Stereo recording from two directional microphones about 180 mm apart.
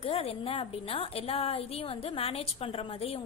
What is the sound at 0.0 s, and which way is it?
A woman's voice, 35° left (ahead or behind).